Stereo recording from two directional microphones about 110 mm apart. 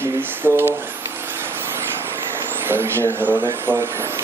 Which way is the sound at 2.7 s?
25° right (ahead or behind).